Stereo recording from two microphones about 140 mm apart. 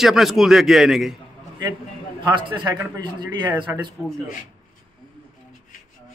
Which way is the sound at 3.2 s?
30° right (ahead or behind).